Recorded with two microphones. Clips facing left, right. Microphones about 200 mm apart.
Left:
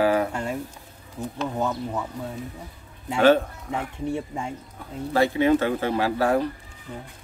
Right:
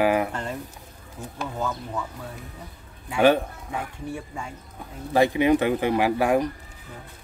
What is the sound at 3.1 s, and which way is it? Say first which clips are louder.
Speech: left 1 dB; 15° right (ahead or behind).